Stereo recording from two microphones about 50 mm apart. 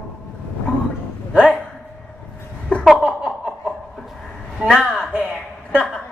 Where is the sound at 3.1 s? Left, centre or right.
Centre.